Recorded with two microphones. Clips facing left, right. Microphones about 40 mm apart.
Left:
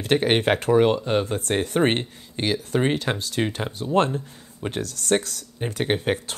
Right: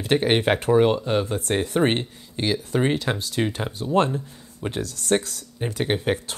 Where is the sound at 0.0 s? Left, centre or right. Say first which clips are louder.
Even; left.